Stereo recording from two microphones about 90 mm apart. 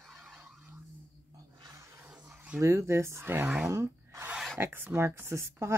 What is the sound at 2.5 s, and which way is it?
Speech, 35° right (ahead or behind).